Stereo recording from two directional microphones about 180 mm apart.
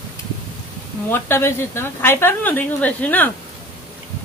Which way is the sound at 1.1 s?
15° left (ahead or behind).